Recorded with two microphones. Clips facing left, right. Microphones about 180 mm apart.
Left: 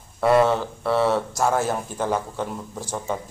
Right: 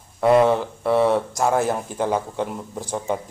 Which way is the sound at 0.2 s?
15° right (ahead or behind).